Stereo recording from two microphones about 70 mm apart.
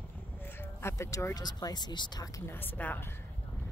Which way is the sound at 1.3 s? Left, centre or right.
Left.